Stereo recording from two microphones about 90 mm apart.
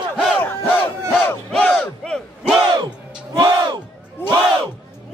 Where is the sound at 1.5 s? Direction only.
15° left (ahead or behind).